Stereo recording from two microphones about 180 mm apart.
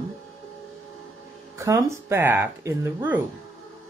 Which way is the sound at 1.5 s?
15° right (ahead or behind).